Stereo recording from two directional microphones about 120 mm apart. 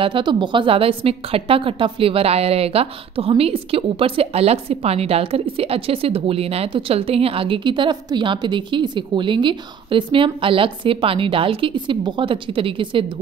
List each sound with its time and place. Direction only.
0.0 s a woman's voice: 40° right (ahead or behind)